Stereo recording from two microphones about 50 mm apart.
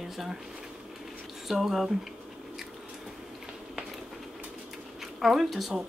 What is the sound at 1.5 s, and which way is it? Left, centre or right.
Speech, centre.